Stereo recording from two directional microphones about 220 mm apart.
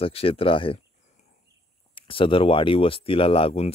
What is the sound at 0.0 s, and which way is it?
Speech, 25° left (ahead or behind).